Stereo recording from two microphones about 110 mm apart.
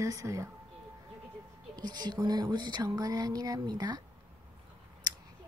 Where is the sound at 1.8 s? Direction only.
40° right (ahead or behind).